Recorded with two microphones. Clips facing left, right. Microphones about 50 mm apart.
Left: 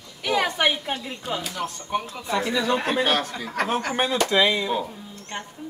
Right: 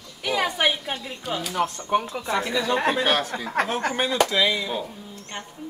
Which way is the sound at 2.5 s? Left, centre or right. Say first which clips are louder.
Right 1 dB; centre.